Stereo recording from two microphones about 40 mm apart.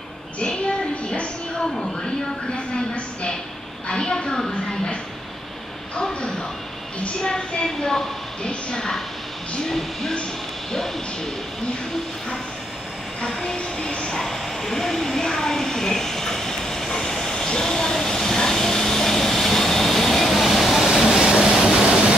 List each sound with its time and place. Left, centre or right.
2.5 s a woman's voice: left
7.2 s a woman's voice: left
13.2 s a woman's voice: centre
14.2 s a sound: centre
20.9 s vehicle: centre